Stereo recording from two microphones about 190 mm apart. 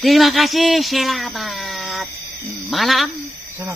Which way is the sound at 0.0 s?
Centre (ahead or behind).